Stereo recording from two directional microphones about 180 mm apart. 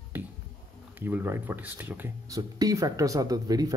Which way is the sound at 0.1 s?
10° right (ahead or behind).